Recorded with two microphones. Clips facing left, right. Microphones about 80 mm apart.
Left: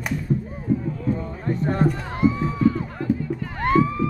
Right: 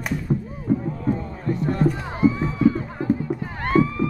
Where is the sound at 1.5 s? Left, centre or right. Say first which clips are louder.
Even; left.